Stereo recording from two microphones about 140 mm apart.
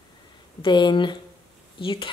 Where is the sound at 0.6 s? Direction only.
35° left (ahead or behind).